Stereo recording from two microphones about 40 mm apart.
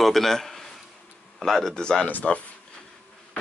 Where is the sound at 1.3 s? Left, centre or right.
Centre.